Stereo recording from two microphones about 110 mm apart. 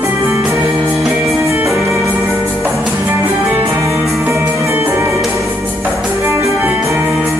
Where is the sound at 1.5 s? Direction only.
25° right (ahead or behind).